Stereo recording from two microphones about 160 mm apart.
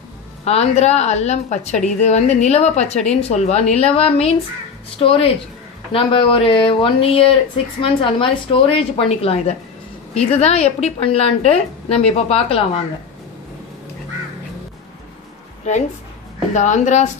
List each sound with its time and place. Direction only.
0.5 s a woman's voice: 40° left (ahead or behind)
16.5 s speech: 50° left (ahead or behind)